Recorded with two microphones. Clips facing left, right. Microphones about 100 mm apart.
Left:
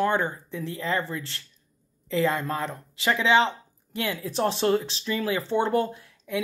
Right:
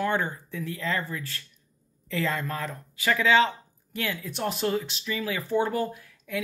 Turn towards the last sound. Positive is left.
turn(degrees=25)  # may be behind; listen again after turning